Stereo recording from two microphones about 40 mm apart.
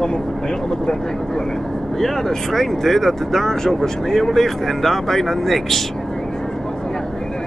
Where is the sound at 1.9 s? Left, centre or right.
Centre.